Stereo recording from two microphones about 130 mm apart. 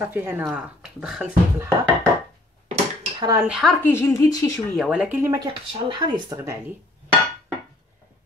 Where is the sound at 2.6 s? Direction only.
55° right (ahead or behind).